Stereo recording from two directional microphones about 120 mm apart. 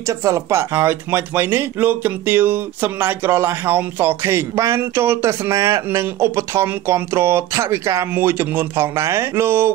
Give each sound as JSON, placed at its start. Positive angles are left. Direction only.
{"t": 0.0, "sound": "speech", "side_deg": -25}